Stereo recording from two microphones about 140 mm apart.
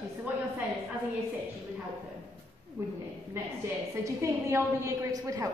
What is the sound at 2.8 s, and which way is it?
Speech, 20° right (ahead or behind).